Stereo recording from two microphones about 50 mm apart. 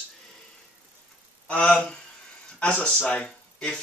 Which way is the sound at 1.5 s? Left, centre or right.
Left.